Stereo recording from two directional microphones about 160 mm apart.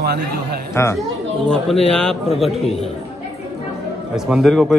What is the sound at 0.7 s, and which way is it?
Speech, 15° left (ahead or behind).